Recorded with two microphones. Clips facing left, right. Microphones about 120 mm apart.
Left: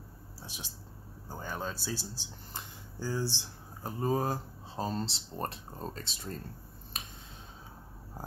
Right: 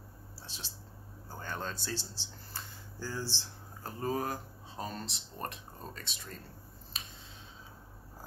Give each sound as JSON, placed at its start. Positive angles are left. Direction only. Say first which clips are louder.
{"t": 0.4, "sound": "speech", "louder": "left 3 dB", "side_deg": 15}
{"t": 4.1, "sound": "speech", "louder": "left 3 dB", "side_deg": 30}
{"t": 6.9, "sound": "finger snapping", "louder": "left 3 dB", "side_deg": 50}